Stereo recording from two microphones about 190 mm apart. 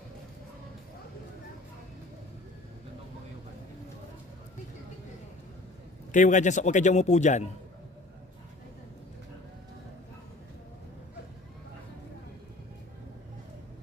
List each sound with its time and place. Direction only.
6.1 s a man's voice: 40° left (ahead or behind)